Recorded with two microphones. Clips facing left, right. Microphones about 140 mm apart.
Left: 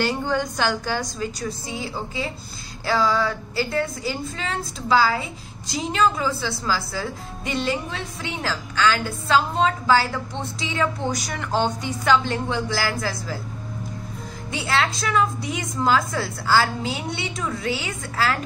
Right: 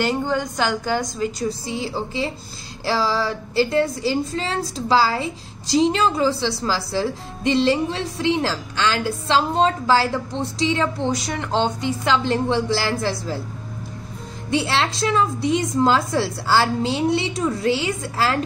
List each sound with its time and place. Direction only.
0.0 s a woman's voice: 15° right (ahead or behind)
1.7 s a woman's voice: 25° right (ahead or behind)
14.6 s a woman's voice: 30° right (ahead or behind)